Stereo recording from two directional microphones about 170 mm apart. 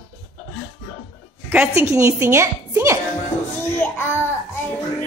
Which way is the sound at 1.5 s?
10° right (ahead or behind).